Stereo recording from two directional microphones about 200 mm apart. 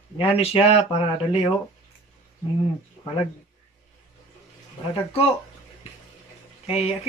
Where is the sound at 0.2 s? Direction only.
30° left (ahead or behind).